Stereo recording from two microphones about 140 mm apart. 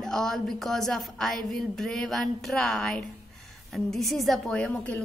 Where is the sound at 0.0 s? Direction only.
5° left (ahead or behind).